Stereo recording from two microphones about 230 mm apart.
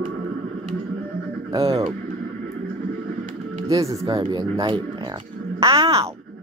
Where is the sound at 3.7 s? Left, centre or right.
Centre.